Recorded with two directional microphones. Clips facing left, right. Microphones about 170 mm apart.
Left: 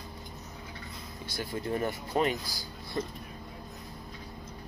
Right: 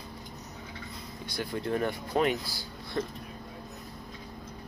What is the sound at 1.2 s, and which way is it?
Speech, 5° left (ahead or behind).